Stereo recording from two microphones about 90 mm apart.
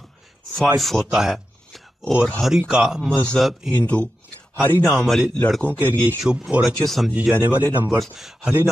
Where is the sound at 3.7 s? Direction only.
15° left (ahead or behind).